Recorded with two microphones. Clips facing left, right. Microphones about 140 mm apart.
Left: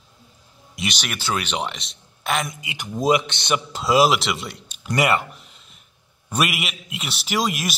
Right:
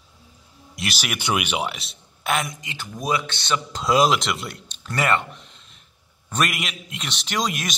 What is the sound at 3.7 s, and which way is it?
A man's voice, 5° left (ahead or behind).